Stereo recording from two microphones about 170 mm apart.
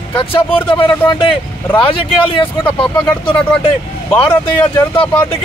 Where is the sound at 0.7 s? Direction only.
30° left (ahead or behind).